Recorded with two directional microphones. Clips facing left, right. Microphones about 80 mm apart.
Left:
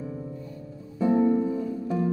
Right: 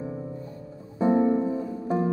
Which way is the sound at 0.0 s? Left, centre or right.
Right.